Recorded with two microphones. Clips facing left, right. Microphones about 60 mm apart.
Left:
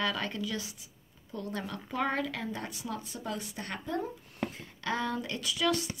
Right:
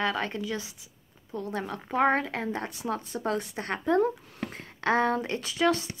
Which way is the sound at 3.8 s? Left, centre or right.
Right.